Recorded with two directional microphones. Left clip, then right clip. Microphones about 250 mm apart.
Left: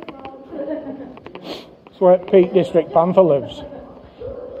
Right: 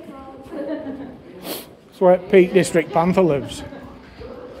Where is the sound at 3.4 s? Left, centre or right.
Right.